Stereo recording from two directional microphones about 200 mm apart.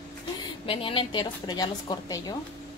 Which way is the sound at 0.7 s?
25° left (ahead or behind).